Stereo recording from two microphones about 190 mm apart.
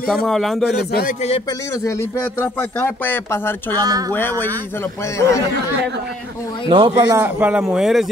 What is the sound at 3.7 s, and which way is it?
Speech, 20° right (ahead or behind).